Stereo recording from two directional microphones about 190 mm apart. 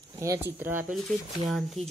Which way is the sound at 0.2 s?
15° right (ahead or behind).